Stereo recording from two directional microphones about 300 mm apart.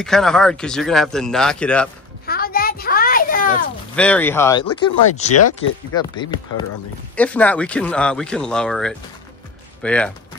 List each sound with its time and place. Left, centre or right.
0.0 s speech: centre
2.2 s a sound: left
3.9 s speech: centre
5.3 s speech: left
5.9 s speech: centre